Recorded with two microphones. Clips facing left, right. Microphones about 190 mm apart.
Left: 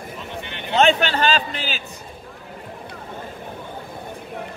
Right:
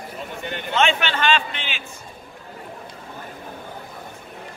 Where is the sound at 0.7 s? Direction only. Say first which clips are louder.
Left 4 dB; 35° left (ahead or behind).